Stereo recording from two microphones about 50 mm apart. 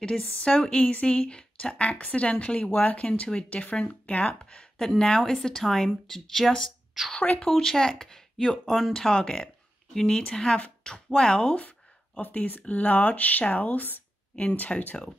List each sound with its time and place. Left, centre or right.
0.2 s speech: left
7.0 s speech: centre
7.3 s speech: centre
8.9 s speech: centre; by 15.0 s left